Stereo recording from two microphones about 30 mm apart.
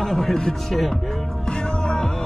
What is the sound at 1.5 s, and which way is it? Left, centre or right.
Music, left.